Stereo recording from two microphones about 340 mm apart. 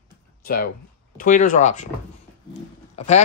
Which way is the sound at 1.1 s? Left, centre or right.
Left.